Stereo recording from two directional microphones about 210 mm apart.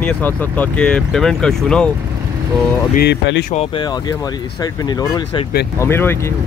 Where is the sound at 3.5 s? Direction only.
30° left (ahead or behind).